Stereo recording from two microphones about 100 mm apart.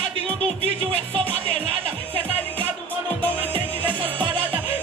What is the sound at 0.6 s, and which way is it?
Music, 70° right (ahead or behind).